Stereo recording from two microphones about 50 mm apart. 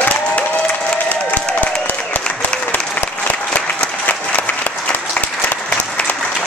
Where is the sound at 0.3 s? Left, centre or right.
Left.